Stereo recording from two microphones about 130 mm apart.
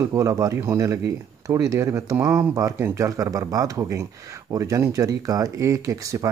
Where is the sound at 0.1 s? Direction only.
25° right (ahead or behind).